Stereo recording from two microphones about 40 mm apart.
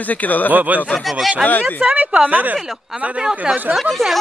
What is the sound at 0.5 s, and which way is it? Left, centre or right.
Speech, right.